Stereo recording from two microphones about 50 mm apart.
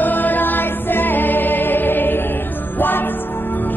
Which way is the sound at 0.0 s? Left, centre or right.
Left.